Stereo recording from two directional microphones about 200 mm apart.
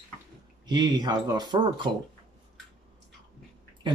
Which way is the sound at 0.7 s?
20° right (ahead or behind).